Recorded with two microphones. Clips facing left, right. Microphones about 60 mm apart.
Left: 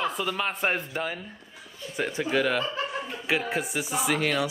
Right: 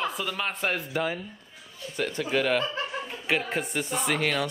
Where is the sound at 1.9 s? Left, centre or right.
Centre.